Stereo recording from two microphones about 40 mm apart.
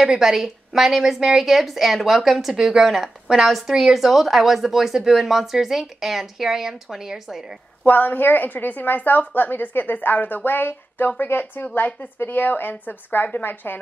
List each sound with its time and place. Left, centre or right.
0.1 s speech: centre
7.8 s a woman's voice: left